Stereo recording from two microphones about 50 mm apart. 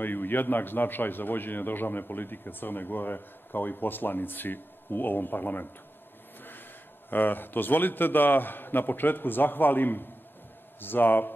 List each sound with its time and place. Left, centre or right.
0.0 s a man's voice: left
7.1 s a man's voice: left